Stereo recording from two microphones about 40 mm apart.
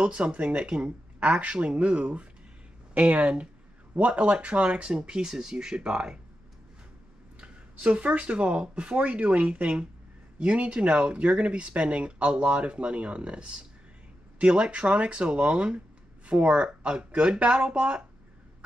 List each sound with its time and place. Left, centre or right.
0.0 s speech: right
1.4 s speech: right
2.9 s speech: right; by 6.1 s centre
7.3 s speech: right
14.7 s speech: right